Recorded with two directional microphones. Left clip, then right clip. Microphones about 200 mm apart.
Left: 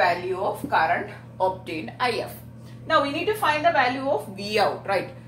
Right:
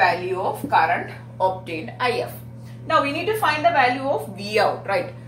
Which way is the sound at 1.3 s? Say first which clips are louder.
Right 3 dB; 15° left (ahead or behind).